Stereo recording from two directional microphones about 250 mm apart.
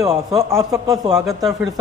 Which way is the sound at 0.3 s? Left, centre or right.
Centre.